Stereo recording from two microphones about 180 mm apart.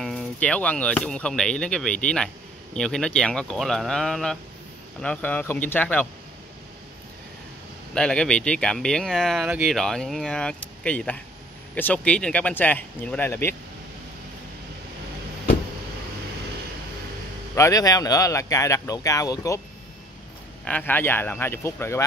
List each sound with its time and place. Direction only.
0.0 s speech: 5° left (ahead or behind)
7.9 s speech: 5° left (ahead or behind)
17.6 s speech: 20° left (ahead or behind)
20.6 s speech: 10° left (ahead or behind)